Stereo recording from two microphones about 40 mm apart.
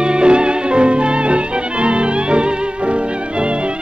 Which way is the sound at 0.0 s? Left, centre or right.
Right.